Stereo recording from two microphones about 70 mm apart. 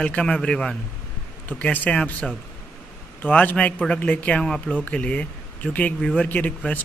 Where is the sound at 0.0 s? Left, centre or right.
Centre.